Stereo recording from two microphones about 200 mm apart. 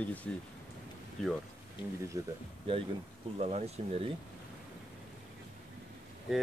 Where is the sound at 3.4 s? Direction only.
30° right (ahead or behind).